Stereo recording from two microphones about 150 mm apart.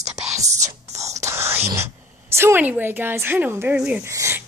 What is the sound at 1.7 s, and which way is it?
A woman's voice, 15° right (ahead or behind).